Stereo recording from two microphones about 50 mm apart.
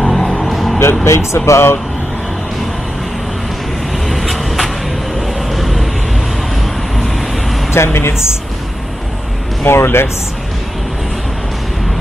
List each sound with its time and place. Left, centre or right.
0.0 s music: centre
1.0 s speech: left
4.1 s vehicle: centre
7.7 s speech: left
9.7 s speech: left